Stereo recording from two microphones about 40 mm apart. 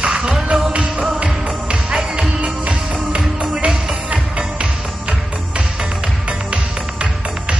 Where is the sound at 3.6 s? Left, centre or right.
Centre.